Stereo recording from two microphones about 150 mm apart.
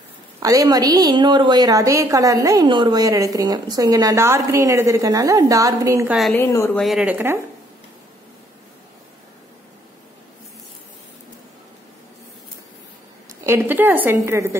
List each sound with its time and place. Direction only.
0.4 s a woman's voice: 25° right (ahead or behind)
6.0 s a woman's voice: centre (ahead or behind)
6.3 s a woman's voice: 20° left (ahead or behind)
6.8 s a woman's voice: 5° right (ahead or behind)
13.4 s a woman's voice: 15° right (ahead or behind)